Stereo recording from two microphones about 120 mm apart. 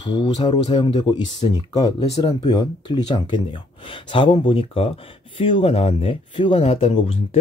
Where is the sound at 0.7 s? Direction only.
50° left (ahead or behind).